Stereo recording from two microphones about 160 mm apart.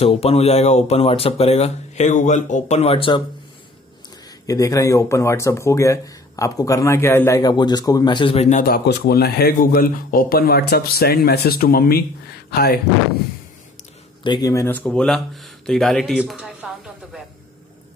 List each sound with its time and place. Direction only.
0.0 s speech: 40° left (ahead or behind)
4.5 s speech: 20° left (ahead or behind); by 8.6 s 45° left (ahead or behind)
8.6 s speech: 80° left
14.2 s speech: 25° left (ahead or behind); by 17.2 s centre (ahead or behind)